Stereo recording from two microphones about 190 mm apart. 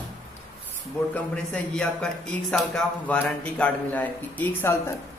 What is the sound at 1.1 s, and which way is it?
A man's voice, 5° left (ahead or behind).